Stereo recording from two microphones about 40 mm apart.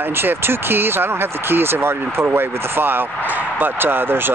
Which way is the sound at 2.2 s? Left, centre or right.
Right.